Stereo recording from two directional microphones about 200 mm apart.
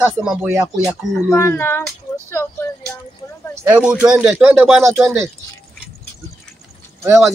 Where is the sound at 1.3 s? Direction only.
15° left (ahead or behind).